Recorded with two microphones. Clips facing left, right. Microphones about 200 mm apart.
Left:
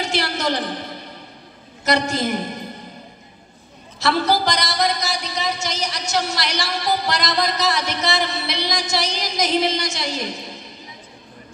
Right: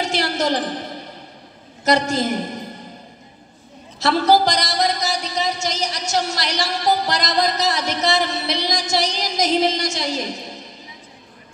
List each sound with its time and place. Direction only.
0.0 s speech: 45° right (ahead or behind)
1.9 s speech: 45° right (ahead or behind)
4.0 s speech: 45° right (ahead or behind)